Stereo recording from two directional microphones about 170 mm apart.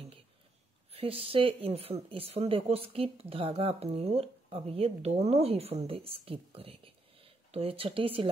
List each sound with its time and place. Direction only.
0.9 s speech: 35° right (ahead or behind)